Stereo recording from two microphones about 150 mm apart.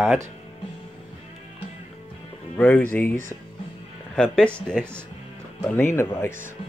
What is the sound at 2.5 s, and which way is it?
Speech, 10° left (ahead or behind).